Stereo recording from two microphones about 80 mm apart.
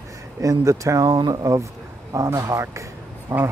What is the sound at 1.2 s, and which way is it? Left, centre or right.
Speech, right.